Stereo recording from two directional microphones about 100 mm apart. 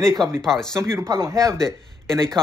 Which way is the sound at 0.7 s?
30° right (ahead or behind).